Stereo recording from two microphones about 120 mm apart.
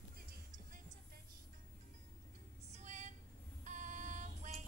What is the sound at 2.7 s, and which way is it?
Music, 85° right.